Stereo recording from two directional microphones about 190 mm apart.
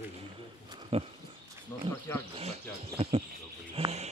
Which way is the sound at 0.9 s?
30° right (ahead or behind).